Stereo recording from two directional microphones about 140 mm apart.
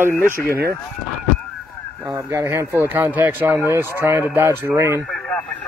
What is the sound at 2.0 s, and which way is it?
Speech, 20° right (ahead or behind).